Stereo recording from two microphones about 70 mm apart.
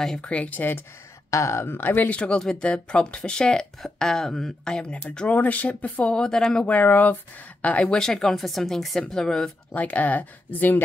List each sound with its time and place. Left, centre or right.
0.0 s speech: centre
0.3 s speech: left
1.3 s speech: left
1.8 s speech: left
2.1 s speech: centre
6.1 s speech: centre
6.6 s speech: left
9.7 s speech: left